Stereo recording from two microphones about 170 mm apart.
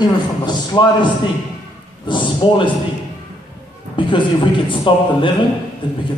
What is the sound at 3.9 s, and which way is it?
A man's voice, 30° left (ahead or behind).